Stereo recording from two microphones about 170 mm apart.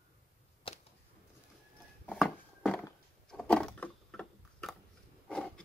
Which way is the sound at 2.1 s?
5° left (ahead or behind).